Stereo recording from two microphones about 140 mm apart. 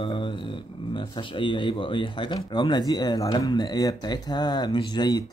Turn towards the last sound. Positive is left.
turn(degrees=30)  # may be behind; listen again after turning